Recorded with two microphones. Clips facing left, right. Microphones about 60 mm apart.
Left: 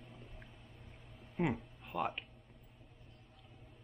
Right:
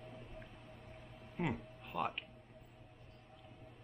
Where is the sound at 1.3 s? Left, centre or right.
Centre.